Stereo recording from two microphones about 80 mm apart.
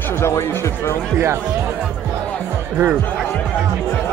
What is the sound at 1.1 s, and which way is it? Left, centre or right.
Speech, right.